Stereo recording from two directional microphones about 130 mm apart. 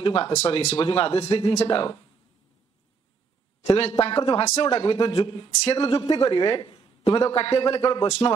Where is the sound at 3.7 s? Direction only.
50° left (ahead or behind).